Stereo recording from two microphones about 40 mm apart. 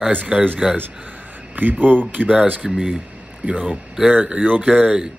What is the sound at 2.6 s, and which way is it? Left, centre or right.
Speech, centre.